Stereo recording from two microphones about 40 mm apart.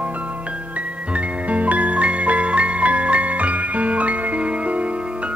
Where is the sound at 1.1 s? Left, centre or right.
Right.